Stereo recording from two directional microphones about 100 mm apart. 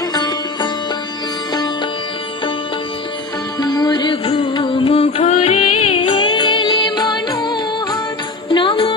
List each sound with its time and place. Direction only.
0.1 s sitar: 45° left (ahead or behind)
3.5 s music: 45° left (ahead or behind)
4.6 s music: 65° left (ahead or behind); by 8.0 s 45° left (ahead or behind)
8.5 s music: 55° left (ahead or behind)